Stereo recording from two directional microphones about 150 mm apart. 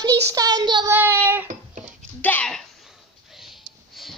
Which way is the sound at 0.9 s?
15° right (ahead or behind).